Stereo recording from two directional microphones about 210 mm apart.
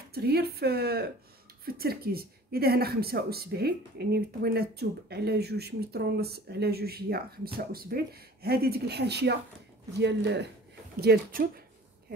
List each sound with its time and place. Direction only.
0.1 s speech: 50° right (ahead or behind)